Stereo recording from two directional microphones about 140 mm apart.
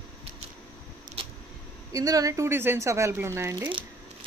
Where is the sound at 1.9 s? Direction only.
25° right (ahead or behind).